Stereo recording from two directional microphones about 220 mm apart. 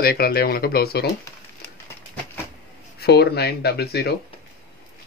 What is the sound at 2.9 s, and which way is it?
Speech, 45° left (ahead or behind).